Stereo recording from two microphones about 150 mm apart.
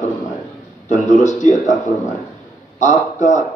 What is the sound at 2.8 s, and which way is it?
Speech, 55° left (ahead or behind).